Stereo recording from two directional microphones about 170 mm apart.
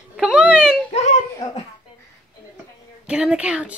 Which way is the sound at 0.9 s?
40° left (ahead or behind).